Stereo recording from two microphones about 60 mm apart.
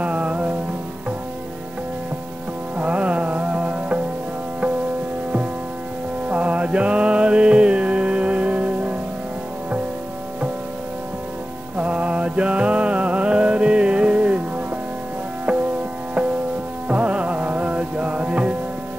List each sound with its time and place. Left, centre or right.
0.0 s music: right
2.8 s music: right
6.2 s music: right
11.7 s mantra: right
16.8 s music: right